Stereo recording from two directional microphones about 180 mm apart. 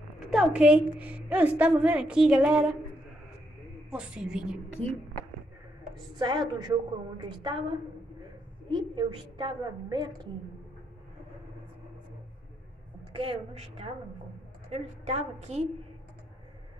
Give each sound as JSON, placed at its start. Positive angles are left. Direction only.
{"t": 0.3, "sound": "a woman's voice", "side_deg": -5}
{"t": 3.9, "sound": "a woman's voice", "side_deg": -5}
{"t": 6.1, "sound": "a woman's voice", "side_deg": -25}
{"t": 13.1, "sound": "a woman's voice", "side_deg": -30}